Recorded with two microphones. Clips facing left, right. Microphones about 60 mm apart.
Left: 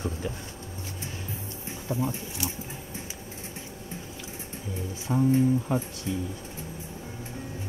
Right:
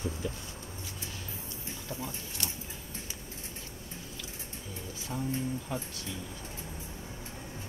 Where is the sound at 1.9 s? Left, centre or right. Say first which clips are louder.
Left 11 dB; left.